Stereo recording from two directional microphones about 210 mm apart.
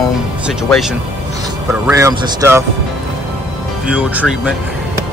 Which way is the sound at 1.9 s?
15° right (ahead or behind).